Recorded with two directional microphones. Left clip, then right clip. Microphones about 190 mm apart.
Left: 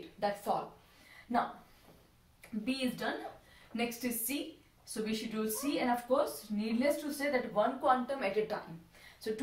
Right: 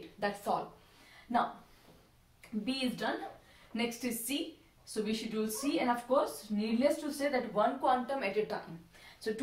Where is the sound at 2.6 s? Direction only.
15° right (ahead or behind).